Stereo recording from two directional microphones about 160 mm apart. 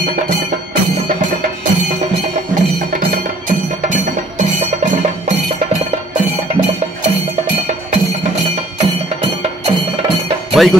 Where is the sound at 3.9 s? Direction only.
50° right (ahead or behind).